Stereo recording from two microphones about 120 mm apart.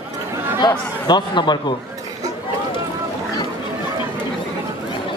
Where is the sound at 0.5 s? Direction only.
35° left (ahead or behind).